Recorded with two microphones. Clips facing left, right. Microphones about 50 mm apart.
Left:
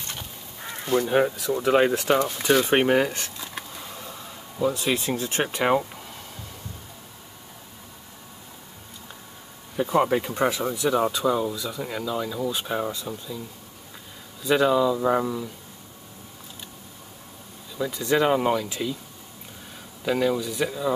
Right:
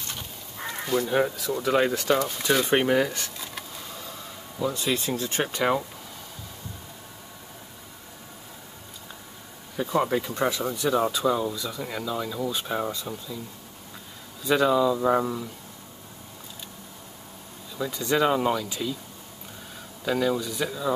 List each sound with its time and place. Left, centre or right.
0.8 s speech: centre
1.6 s speech: centre
3.5 s a sound: centre
5.4 s speech: centre
9.8 s speech: centre
14.4 s speech: centre
17.7 s speech: centre
20.1 s speech: centre